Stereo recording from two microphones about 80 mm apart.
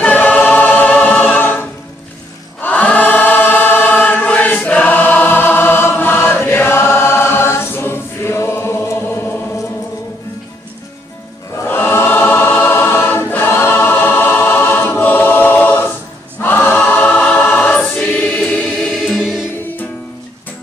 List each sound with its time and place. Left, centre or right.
0.0 s choir: centre
2.6 s choir: centre
11.6 s choir: left; by 17.5 s centre
17.5 s choir: left
17.7 s choir: centre
18.5 s music: centre
19.1 s music: centre